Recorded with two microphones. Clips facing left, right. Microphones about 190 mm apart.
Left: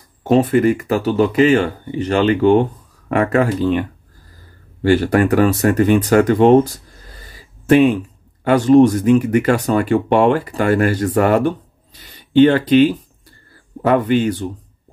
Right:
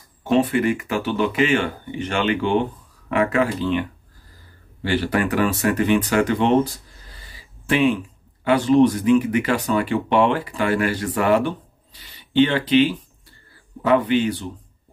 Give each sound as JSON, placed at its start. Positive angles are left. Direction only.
{"t": 0.2, "sound": "speech", "side_deg": 40}
{"t": 4.8, "sound": "speech", "side_deg": 45}
{"t": 7.2, "sound": "a sound", "side_deg": 45}
{"t": 8.5, "sound": "speech", "side_deg": 45}